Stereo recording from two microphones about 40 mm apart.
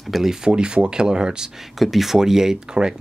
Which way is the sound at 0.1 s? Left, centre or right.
Centre.